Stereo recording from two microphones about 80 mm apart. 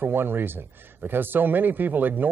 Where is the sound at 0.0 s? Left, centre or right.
Right.